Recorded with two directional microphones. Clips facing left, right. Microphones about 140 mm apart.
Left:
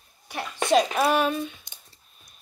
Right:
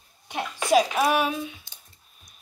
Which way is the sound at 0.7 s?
10° right (ahead or behind).